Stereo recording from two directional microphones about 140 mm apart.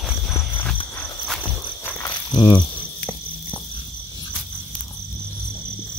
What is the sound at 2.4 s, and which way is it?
Cricket, 30° left (ahead or behind).